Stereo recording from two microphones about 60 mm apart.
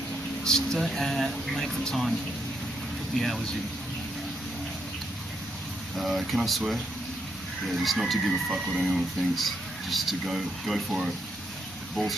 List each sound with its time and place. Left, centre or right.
0.4 s speech: centre
3.2 s speech: centre
5.9 s speech: centre
7.6 s speech: centre